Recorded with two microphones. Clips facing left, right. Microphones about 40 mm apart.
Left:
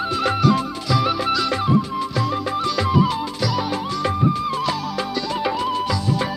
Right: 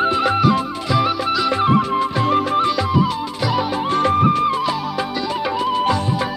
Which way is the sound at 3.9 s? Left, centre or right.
Right.